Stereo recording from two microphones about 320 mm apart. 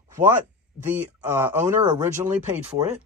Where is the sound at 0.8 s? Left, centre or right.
Centre.